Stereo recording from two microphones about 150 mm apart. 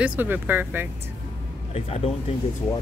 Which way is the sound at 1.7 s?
40° left (ahead or behind).